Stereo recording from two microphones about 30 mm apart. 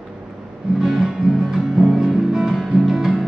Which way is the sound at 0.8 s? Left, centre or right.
Centre.